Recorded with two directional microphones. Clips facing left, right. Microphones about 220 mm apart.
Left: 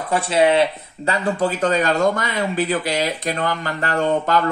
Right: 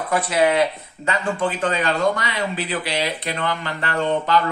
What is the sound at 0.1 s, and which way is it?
Speech, 30° left (ahead or behind).